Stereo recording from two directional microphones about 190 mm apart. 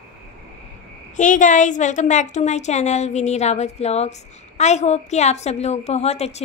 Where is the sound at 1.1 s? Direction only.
40° left (ahead or behind).